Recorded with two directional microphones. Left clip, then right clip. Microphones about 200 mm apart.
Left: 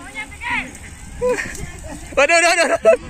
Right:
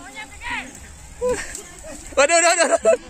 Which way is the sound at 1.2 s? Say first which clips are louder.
Left 3 dB; 10° right (ahead or behind).